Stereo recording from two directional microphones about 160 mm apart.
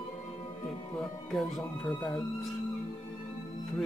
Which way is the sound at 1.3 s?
Centre (ahead or behind).